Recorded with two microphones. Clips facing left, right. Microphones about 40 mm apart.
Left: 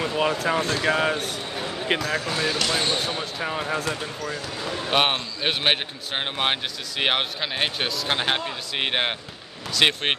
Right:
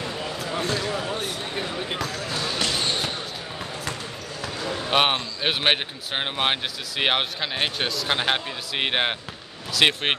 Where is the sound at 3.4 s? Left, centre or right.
Left.